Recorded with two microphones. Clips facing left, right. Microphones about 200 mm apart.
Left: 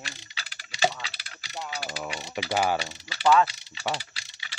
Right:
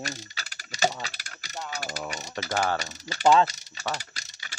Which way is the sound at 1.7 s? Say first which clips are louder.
Right 1 dB; 45° right (ahead or behind).